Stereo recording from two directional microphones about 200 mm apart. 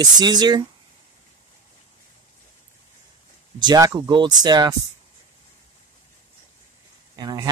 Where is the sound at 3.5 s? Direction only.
20° right (ahead or behind).